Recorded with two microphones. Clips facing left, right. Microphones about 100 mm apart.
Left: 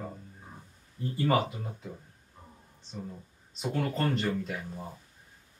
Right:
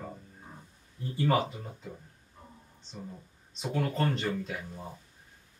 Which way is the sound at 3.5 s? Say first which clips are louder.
Even; centre (ahead or behind).